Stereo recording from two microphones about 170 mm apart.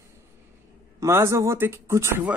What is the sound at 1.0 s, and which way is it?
Speech, 15° right (ahead or behind).